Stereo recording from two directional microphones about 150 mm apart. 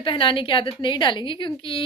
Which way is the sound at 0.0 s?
35° left (ahead or behind).